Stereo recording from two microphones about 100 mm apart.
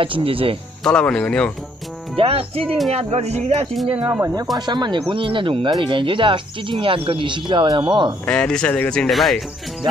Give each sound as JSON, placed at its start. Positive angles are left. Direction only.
{"t": 0.0, "sound": "speech", "side_deg": -65}
{"t": 0.8, "sound": "speech", "side_deg": 10}
{"t": 2.1, "sound": "music", "side_deg": -75}
{"t": 2.9, "sound": "speech", "side_deg": -90}
{"t": 3.9, "sound": "speech", "side_deg": -15}
{"t": 4.6, "sound": "speech", "side_deg": -45}
{"t": 8.3, "sound": "speech", "side_deg": 10}